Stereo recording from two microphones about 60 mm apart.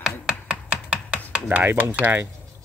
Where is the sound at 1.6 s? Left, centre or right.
Right.